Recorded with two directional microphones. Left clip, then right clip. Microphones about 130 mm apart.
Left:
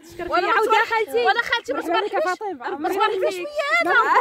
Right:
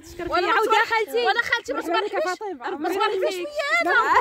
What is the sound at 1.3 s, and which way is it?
Speech, 15° right (ahead or behind).